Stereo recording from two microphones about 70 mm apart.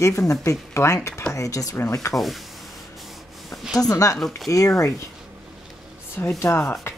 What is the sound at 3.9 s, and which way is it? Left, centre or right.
A woman's voice, left.